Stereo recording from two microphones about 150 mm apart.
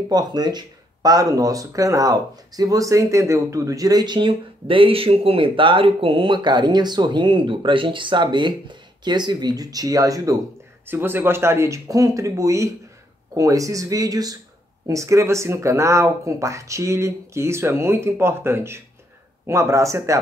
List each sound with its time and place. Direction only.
0.1 s speech: 25° right (ahead or behind)